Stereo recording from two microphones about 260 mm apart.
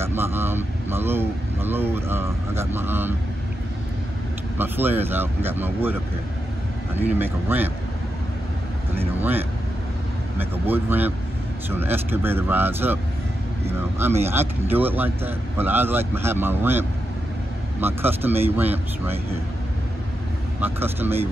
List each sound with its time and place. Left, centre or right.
0.0 s speech: centre
4.6 s speech: centre
7.0 s speech: centre
10.3 s speech: centre
20.6 s speech: centre